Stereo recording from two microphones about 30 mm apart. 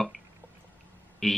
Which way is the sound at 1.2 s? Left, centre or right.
Centre.